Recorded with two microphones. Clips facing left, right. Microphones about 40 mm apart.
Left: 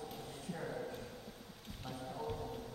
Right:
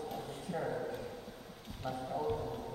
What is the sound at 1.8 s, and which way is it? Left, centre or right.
Music, centre.